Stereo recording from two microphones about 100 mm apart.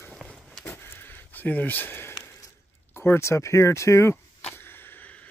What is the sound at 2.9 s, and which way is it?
Speech, 25° left (ahead or behind).